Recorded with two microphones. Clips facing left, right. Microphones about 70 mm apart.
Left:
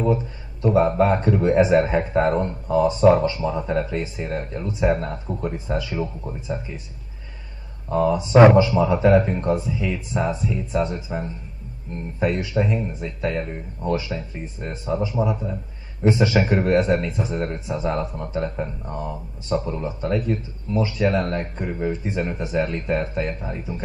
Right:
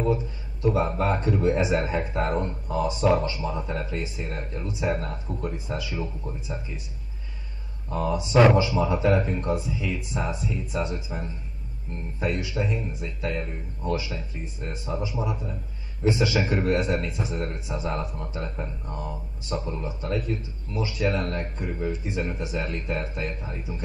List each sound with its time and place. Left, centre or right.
0.0 s a man's voice: left
7.9 s a man's voice: left
18.9 s speech: left
19.5 s a man's voice: left